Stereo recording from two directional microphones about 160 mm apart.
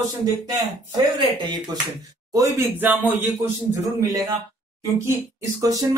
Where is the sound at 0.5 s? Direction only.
25° right (ahead or behind).